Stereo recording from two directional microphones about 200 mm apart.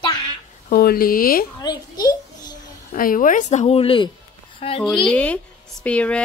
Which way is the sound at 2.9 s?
45° left (ahead or behind).